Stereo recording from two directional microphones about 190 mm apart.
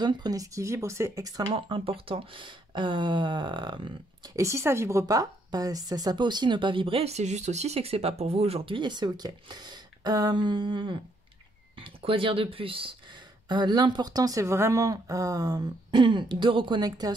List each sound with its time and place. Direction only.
0.0 s speech: 20° right (ahead or behind)